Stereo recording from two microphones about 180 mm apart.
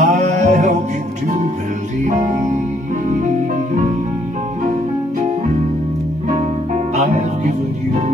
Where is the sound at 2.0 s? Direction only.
40° right (ahead or behind).